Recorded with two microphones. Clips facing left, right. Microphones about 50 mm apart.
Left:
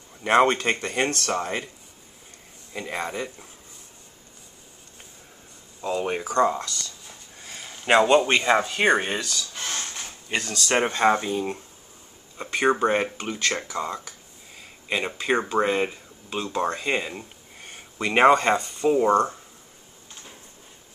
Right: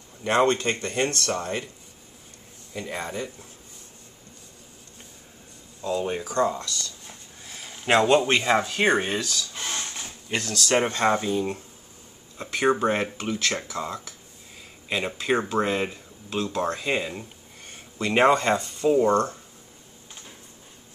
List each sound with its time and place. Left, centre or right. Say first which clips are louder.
0.2 s speech: left 2 dB; left
2.7 s a man's voice: left 1 dB; left
5.8 s speech: left 1 dB; left
6.2 s speech: left 3 dB; centre
7.4 s speech: left 1 dB; centre